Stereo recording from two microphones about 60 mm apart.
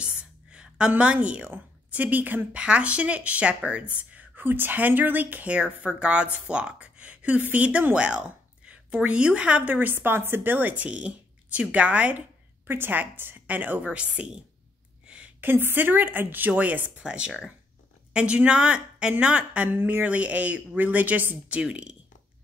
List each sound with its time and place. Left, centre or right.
0.0 s a sound: centre
1.5 s a woman's voice: right
2.5 s speech: centre
5.6 s speech: centre
12.6 s speech: right; by 14.4 s centre
15.0 s a sound: centre
15.4 s speech: right
17.0 s speech: centre
21.5 s speech: centre